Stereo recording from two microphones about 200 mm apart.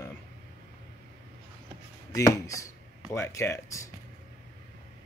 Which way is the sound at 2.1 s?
15° left (ahead or behind).